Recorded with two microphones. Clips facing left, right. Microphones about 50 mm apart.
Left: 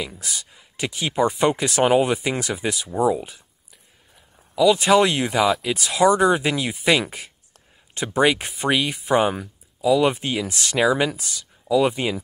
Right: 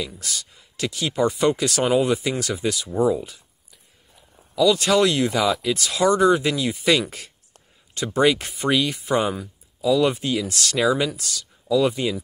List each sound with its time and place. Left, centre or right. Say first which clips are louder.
0.0 s speech: even; left
2.9 s speech: left 1 dB; centre
4.6 s speech: left 2 dB; left